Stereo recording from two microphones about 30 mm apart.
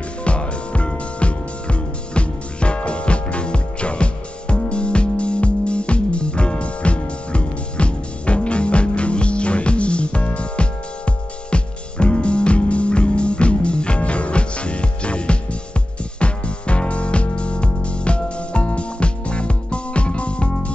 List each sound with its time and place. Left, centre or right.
0.2 s music: left